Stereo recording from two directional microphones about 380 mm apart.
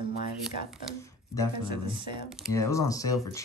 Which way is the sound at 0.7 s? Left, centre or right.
Centre.